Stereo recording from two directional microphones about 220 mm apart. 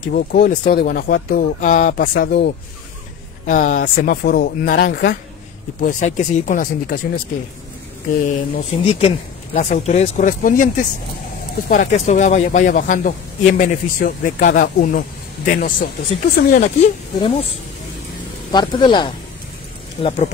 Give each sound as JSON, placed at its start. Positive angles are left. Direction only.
{"t": 0.1, "sound": "speech", "side_deg": 40}
{"t": 2.1, "sound": "speech", "side_deg": 50}
{"t": 3.4, "sound": "speech", "side_deg": 35}
{"t": 8.5, "sound": "speech", "side_deg": 30}